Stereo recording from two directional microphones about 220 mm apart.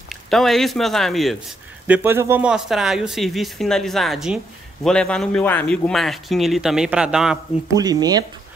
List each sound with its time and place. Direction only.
0.1 s speech: centre (ahead or behind)
1.9 s speech: 10° right (ahead or behind)
7.6 s speech: 15° right (ahead or behind)